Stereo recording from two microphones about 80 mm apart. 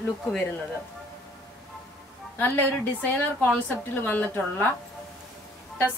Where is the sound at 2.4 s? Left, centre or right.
Left.